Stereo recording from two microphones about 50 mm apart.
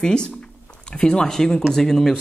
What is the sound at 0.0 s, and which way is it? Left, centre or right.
Speech, centre.